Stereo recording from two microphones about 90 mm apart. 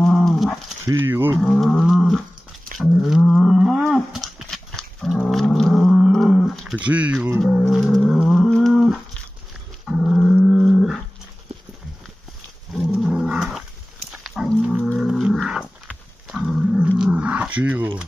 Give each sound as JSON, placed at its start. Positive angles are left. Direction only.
{"t": 0.0, "sound": "dog", "side_deg": 5}
{"t": 0.8, "sound": "speech", "side_deg": -30}
{"t": 1.4, "sound": "wild animals", "side_deg": 5}
{"t": 2.8, "sound": "a sound", "side_deg": 0}
{"t": 3.3, "sound": "roaring cats", "side_deg": 0}
{"t": 3.9, "sound": "dog", "side_deg": -5}
{"t": 7.3, "sound": "a sound", "side_deg": 0}
{"t": 9.8, "sound": "dog", "side_deg": -5}
{"t": 12.7, "sound": "dog", "side_deg": -5}
{"t": 14.1, "sound": "a sound", "side_deg": -5}
{"t": 15.0, "sound": "dog", "side_deg": -5}